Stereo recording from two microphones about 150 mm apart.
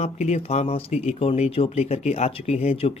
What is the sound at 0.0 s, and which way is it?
Speech, 45° left (ahead or behind).